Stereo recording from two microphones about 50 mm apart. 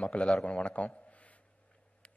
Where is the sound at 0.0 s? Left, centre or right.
Left.